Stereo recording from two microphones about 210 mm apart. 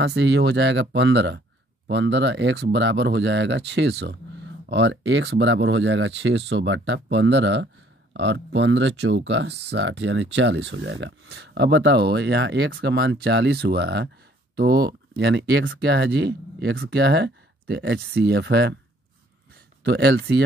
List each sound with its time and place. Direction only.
0.0 s speech: 55° right (ahead or behind)
19.8 s speech: 50° right (ahead or behind)